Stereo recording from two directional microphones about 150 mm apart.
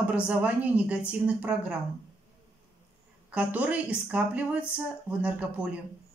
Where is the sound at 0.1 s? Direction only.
10° right (ahead or behind).